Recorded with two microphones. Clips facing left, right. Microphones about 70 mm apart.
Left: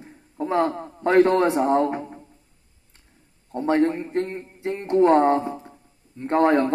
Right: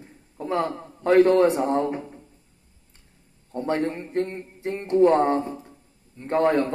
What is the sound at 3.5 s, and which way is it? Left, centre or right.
A man's voice, left.